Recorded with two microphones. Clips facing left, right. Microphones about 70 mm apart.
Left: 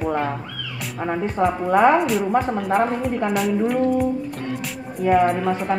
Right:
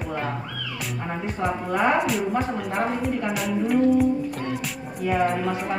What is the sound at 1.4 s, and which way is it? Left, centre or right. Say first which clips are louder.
Speech: left 6 dB; left.